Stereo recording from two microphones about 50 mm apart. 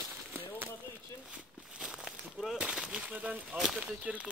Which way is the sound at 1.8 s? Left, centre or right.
Centre.